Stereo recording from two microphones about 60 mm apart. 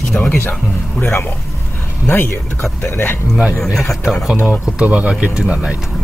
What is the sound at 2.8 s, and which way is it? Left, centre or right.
Speech, left.